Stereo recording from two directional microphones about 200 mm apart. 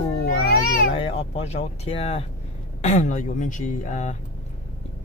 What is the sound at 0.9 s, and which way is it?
Speech, 30° left (ahead or behind).